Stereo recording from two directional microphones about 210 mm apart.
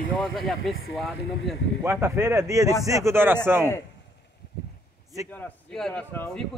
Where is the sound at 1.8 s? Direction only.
10° right (ahead or behind).